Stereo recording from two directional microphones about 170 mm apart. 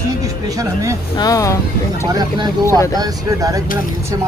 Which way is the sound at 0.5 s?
20° right (ahead or behind).